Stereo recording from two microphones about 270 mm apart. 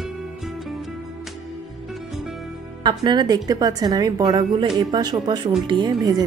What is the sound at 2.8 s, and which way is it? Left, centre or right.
A woman's voice, centre.